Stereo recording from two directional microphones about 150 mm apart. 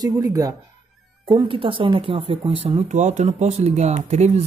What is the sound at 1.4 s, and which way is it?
Speech, 35° right (ahead or behind).